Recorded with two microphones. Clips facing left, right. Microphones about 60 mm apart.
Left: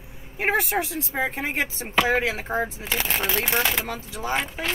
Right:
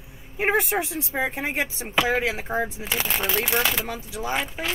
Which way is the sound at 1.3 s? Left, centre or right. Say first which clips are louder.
Even; centre.